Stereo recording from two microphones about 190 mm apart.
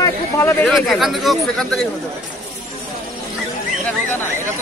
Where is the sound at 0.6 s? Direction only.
Centre (ahead or behind).